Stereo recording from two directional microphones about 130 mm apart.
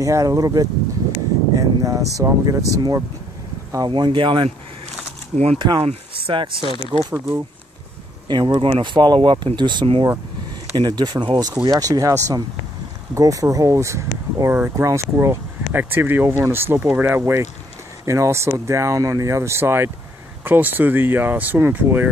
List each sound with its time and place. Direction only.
0.0 s speech: 25° right (ahead or behind)
5.6 s speech: 40° right (ahead or behind)
6.9 s speech: 10° right (ahead or behind)
8.3 s speech: 40° right (ahead or behind); by 22.1 s 15° right (ahead or behind)